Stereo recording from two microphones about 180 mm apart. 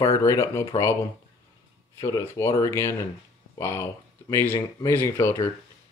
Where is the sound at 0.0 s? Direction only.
15° left (ahead or behind).